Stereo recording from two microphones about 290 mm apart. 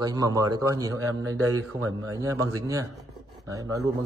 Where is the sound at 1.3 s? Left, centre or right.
Right.